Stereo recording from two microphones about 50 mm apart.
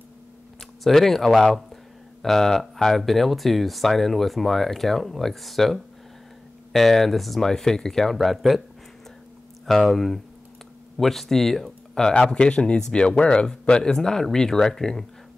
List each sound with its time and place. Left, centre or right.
0.6 s speech: centre
9.7 s speech: centre